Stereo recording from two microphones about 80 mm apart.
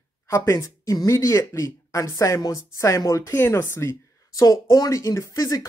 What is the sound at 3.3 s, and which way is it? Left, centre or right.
Speech, left.